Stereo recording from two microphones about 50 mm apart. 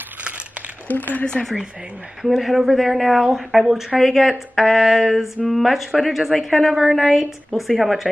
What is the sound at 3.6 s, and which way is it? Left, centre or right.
Speech, centre.